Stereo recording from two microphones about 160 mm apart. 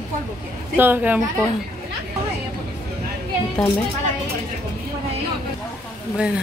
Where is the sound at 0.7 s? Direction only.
10° right (ahead or behind).